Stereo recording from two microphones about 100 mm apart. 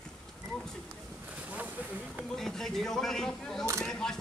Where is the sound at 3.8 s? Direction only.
5° left (ahead or behind).